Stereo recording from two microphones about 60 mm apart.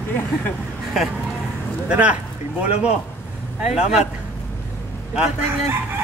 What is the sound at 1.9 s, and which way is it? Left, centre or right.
Speech, right.